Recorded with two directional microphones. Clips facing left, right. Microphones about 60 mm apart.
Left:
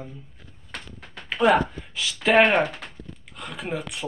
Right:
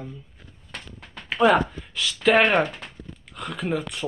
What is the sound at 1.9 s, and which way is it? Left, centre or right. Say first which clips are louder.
Speech: even; centre.